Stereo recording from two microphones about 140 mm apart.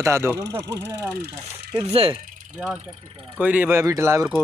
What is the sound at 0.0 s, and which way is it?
Speech, 20° right (ahead or behind).